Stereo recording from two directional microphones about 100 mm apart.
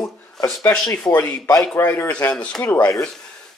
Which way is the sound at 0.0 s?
40° left (ahead or behind).